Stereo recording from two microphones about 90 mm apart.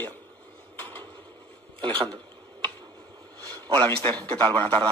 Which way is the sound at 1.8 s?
80° right.